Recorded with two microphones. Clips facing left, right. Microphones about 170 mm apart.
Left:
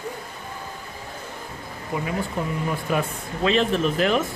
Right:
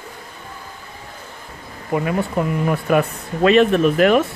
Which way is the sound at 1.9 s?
60° right (ahead or behind).